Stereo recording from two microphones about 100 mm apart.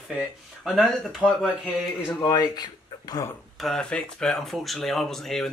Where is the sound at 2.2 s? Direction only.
35° left (ahead or behind).